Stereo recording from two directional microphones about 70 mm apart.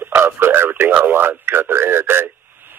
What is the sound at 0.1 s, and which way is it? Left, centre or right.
Speech, right.